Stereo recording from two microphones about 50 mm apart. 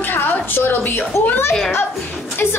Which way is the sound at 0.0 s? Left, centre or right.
Left.